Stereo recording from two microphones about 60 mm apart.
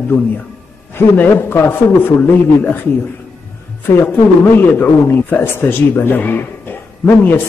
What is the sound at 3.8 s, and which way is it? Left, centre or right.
A man's voice, left.